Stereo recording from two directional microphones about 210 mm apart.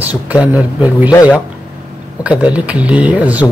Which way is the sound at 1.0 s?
15° left (ahead or behind).